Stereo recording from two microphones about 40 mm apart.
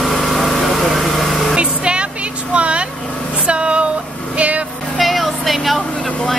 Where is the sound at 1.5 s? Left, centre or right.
Right.